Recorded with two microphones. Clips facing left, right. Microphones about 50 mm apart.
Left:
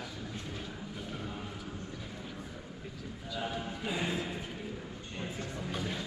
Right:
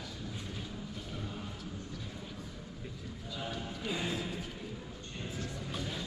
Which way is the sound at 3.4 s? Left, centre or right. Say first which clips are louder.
Left 3 dB; centre.